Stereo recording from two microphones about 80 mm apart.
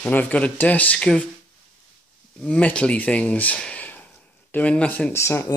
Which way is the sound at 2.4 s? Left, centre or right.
Centre.